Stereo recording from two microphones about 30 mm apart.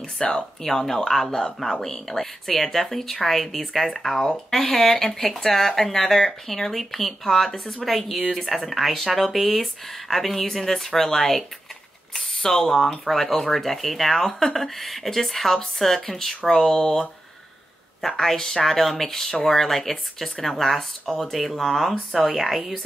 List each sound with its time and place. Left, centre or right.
0.2 s speech: left
0.6 s a woman's voice: centre
18.1 s speech: centre
21.2 s a woman's voice: centre